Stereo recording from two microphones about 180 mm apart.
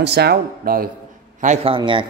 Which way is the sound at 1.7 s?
30° right (ahead or behind).